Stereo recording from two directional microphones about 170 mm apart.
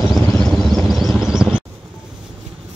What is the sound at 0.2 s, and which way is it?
Vehicle, 10° left (ahead or behind).